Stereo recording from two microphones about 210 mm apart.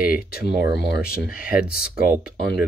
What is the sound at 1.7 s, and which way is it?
Speech, 45° left (ahead or behind).